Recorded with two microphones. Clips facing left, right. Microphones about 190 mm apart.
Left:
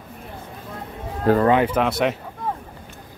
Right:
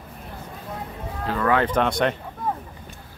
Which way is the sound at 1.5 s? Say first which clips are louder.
Left 3 dB; 15° left (ahead or behind).